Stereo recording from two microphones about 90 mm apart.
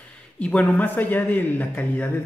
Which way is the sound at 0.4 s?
15° left (ahead or behind).